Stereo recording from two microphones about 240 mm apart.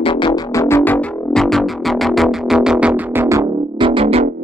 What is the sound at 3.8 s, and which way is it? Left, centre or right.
Music, right.